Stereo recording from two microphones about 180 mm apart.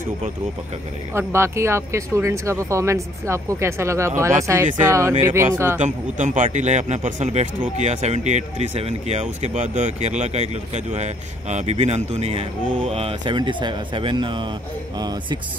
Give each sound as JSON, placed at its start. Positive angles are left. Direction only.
{"t": 1.1, "sound": "speech", "side_deg": -15}
{"t": 5.8, "sound": "speech", "side_deg": -40}